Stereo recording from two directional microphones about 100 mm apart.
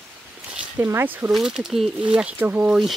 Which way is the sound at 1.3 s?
5° right (ahead or behind).